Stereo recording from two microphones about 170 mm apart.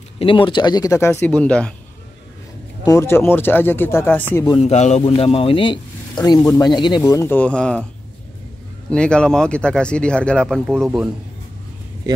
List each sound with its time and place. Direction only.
0.2 s speech: 30° left (ahead or behind); by 1.7 s 5° left (ahead or behind)
2.8 s speech: 20° left (ahead or behind)
4.6 s a man's voice: 40° left (ahead or behind); by 7.8 s 5° left (ahead or behind)
8.9 s speech: 5° left (ahead or behind)